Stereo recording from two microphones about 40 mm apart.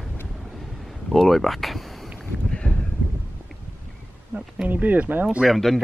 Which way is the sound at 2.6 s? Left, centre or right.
Left.